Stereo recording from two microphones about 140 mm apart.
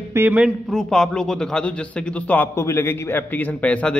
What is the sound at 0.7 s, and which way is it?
A man's voice, centre (ahead or behind).